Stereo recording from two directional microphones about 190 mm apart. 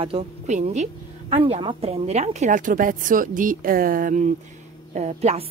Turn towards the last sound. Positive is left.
turn(degrees=-35)  # may be behind; listen again after turning